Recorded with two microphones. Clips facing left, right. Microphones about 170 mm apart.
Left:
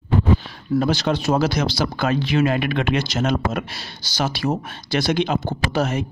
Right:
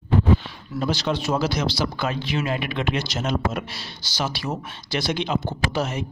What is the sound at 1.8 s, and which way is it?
Speech, 60° left (ahead or behind).